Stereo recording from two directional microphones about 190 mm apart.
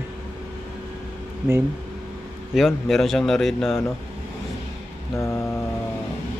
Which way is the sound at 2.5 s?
Centre (ahead or behind).